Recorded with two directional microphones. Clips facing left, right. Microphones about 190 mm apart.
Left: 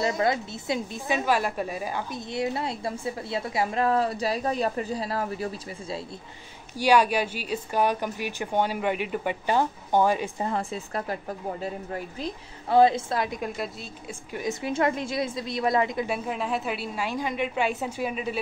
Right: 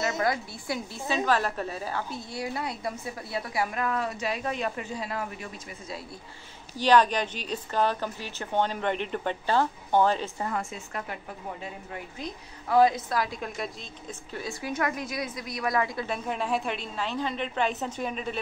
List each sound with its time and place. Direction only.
0.2 s a woman's voice: 20° left (ahead or behind)
6.8 s a woman's voice: 10° left (ahead or behind)
10.4 s a woman's voice: 30° left (ahead or behind)
16.1 s a woman's voice: centre (ahead or behind)